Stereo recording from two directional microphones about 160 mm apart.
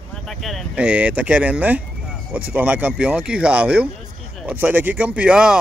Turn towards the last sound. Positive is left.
turn(degrees=-5)  # may be behind; listen again after turning